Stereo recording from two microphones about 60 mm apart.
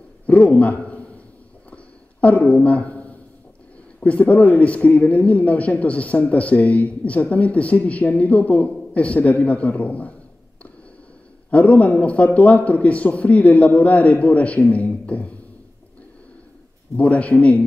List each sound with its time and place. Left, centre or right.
0.3 s a sound: left
4.0 s a man's voice: left
11.5 s a man's voice: left
16.9 s a man's voice: left